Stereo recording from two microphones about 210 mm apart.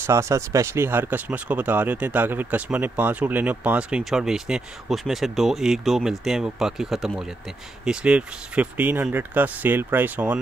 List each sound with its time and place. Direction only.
0.0 s speech: 15° right (ahead or behind)